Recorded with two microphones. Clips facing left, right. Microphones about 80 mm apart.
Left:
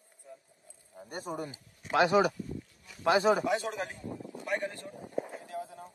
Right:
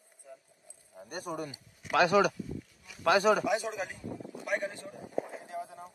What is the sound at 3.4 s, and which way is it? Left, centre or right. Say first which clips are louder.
Speech: even; centre.